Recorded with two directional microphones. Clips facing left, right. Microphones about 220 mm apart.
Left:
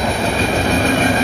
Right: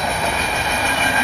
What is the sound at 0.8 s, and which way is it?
Train, 50° left (ahead or behind).